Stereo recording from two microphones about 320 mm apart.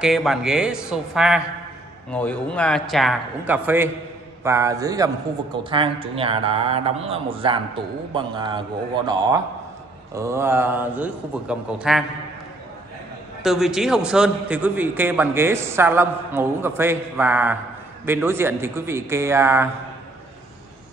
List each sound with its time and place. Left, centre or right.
0.0 s a man's voice: centre
13.4 s a man's voice: centre